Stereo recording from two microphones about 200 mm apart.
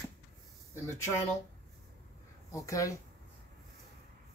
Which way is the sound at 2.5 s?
15° left (ahead or behind).